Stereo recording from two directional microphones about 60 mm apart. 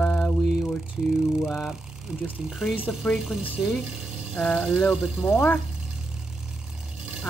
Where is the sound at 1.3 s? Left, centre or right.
Centre.